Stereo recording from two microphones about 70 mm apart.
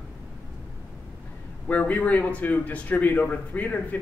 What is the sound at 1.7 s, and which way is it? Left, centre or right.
A man's voice, left.